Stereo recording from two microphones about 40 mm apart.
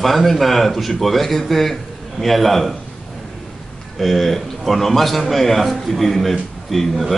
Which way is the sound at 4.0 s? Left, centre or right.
Centre.